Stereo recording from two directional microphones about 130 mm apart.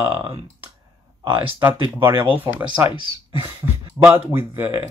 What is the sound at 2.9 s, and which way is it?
Speech, 40° left (ahead or behind).